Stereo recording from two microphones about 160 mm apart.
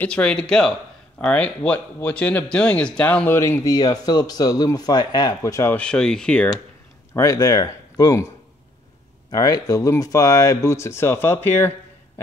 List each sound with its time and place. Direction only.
0.0 s speech: 5° left (ahead or behind)
7.2 s speech: 20° left (ahead or behind)
9.3 s speech: 20° left (ahead or behind)